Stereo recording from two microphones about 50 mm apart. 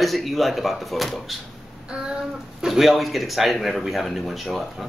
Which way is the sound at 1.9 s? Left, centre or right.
Centre.